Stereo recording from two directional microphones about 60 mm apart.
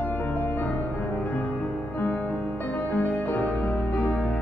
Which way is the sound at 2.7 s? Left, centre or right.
Left.